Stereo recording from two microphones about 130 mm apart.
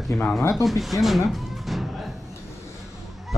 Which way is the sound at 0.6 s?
Centre (ahead or behind).